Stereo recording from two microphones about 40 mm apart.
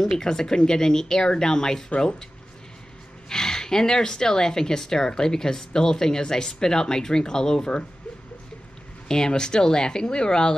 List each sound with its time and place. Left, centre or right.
0.2 s speech: centre
3.3 s speech: centre
9.0 s speech: centre